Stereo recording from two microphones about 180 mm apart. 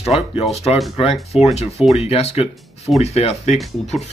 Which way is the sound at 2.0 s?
35° left (ahead or behind).